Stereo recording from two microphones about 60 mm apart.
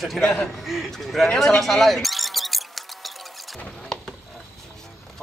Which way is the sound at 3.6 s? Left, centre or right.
Centre.